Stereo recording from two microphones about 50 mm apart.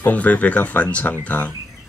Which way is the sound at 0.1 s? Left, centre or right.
Left.